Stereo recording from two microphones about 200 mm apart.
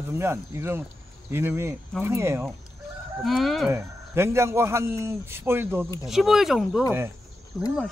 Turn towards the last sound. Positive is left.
turn(degrees=0)  # may be behind; listen again after turning